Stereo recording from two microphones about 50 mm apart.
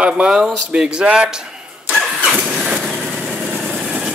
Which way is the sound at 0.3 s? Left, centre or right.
Centre.